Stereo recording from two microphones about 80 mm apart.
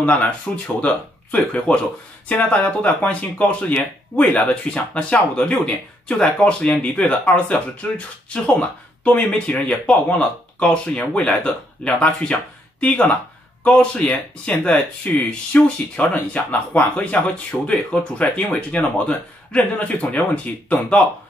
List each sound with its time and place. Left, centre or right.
0.0 s speech: centre